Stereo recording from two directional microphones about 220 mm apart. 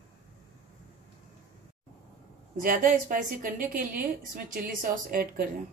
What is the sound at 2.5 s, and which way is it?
A woman's voice, 40° right (ahead or behind).